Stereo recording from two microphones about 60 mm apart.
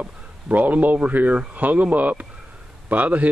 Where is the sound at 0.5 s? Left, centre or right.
Right.